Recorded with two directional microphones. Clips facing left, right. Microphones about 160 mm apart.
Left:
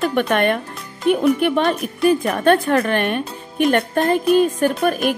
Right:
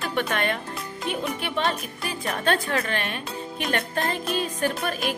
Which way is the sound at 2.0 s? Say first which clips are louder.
Left 11 dB; 55° left (ahead or behind).